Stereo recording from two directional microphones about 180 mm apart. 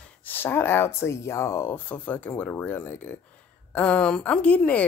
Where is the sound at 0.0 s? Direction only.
10° left (ahead or behind).